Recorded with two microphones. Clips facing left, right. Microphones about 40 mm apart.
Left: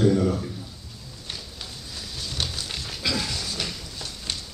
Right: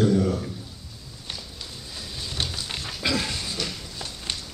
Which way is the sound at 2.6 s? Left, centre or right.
Centre.